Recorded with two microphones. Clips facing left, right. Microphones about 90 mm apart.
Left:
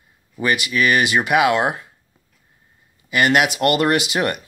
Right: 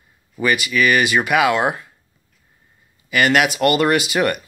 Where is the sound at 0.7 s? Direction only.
15° left (ahead or behind).